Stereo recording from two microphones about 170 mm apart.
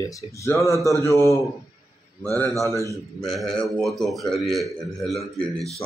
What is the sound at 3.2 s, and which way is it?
A man's voice, centre (ahead or behind).